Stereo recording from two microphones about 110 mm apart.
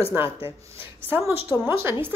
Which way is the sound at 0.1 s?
20° right (ahead or behind).